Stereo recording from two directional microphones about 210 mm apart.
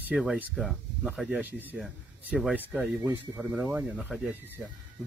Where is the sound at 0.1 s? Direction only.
5° right (ahead or behind).